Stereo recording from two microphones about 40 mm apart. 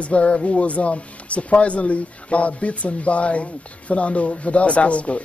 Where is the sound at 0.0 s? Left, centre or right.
Left.